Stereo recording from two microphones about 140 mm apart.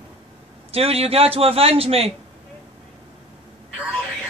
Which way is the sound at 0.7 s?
45° right (ahead or behind).